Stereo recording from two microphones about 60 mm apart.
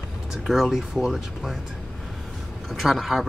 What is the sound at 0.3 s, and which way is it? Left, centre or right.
Speech, centre.